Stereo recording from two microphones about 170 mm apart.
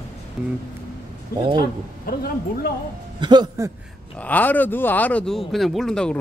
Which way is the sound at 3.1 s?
25° right (ahead or behind).